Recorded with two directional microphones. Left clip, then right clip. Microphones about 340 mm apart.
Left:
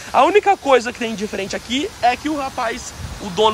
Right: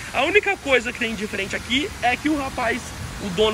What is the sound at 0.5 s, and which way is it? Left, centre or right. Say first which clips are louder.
Speech: left 6 dB; centre.